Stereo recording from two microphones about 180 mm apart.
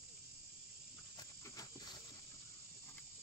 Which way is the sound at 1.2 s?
20° left (ahead or behind).